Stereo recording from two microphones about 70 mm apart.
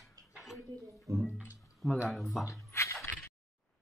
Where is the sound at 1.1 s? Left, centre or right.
Right.